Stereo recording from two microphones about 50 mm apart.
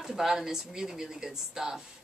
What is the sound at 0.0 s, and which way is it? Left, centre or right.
Speech, centre.